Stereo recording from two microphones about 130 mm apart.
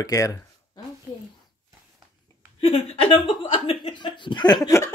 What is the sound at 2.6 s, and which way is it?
Speech, 50° left (ahead or behind).